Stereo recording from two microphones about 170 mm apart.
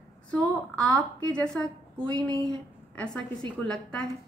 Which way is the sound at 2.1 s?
20° right (ahead or behind).